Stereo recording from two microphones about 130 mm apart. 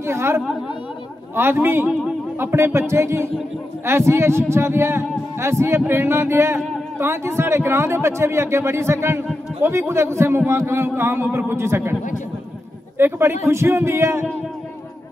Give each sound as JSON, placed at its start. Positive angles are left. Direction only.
{"t": 0.0, "sound": "a man's voice", "side_deg": -20}
{"t": 12.9, "sound": "a man's voice", "side_deg": -15}